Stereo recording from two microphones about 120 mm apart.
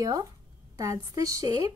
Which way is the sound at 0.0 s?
30° right (ahead or behind).